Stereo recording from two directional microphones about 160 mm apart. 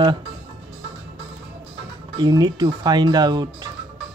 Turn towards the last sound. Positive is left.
turn(degrees=-25)  # may be behind; listen again after turning